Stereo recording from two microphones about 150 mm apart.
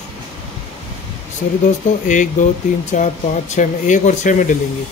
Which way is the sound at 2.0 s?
55° left (ahead or behind).